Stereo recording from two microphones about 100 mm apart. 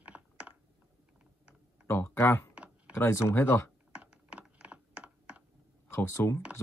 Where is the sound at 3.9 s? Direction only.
10° right (ahead or behind).